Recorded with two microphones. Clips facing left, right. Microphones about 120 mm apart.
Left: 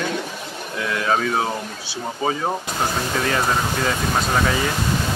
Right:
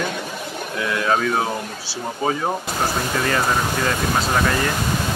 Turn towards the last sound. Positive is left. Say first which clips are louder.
# even
turn(degrees=0)  # may be behind; listen again after turning